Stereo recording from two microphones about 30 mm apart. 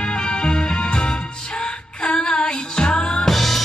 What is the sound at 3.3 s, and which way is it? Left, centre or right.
Drum kit, centre.